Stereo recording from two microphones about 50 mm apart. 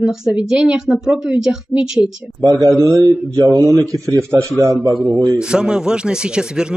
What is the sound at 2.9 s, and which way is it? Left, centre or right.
Speech, right.